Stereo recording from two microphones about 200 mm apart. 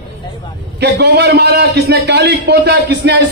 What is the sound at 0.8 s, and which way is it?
A man's voice, 55° right (ahead or behind).